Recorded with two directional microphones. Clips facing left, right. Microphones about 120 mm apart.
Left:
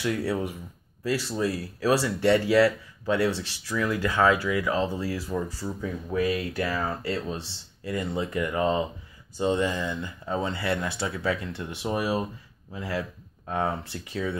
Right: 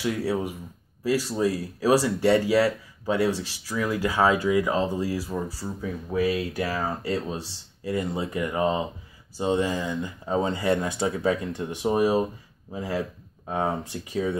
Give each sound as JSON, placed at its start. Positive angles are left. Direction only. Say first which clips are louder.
{"t": 0.0, "sound": "speech", "louder": "right 1 dB", "side_deg": -15}
{"t": 4.3, "sound": "speech", "louder": "right 2 dB", "side_deg": -20}